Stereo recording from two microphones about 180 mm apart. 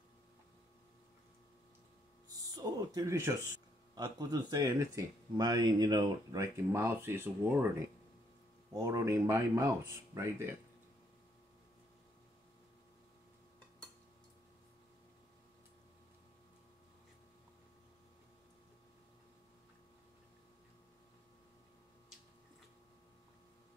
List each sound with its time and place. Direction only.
2.5 s speech: 20° right (ahead or behind)
8.7 s speech: 15° right (ahead or behind)